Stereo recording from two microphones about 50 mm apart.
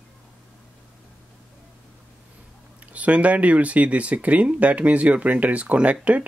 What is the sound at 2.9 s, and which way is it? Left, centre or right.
Speech, right.